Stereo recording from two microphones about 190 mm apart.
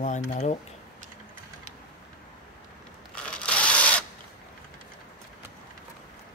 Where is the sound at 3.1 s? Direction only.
5° left (ahead or behind).